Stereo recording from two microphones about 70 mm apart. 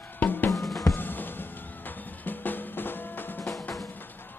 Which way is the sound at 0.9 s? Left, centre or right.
Left.